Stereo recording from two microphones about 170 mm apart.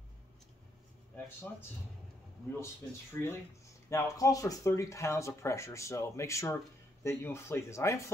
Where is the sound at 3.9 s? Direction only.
20° left (ahead or behind).